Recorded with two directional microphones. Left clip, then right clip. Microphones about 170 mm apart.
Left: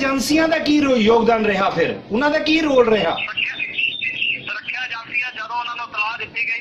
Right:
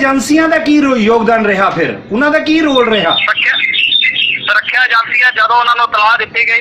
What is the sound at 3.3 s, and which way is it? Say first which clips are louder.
Speech: right 12 dB; 40° right (ahead or behind).